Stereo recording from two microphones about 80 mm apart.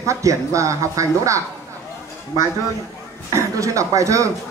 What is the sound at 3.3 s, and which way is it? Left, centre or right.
Speech, right.